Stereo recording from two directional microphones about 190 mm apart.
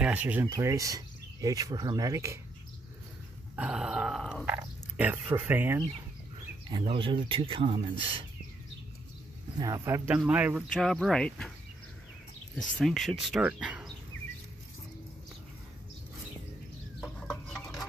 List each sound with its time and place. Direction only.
0.0 s speech: 10° right (ahead or behind)
3.5 s speech: 5° right (ahead or behind)
6.7 s speech: 25° right (ahead or behind)
9.6 s speech: 15° right (ahead or behind); by 11.5 s 5° left (ahead or behind)
12.5 s speech: centre (ahead or behind)
17.3 s a sound: 5° left (ahead or behind)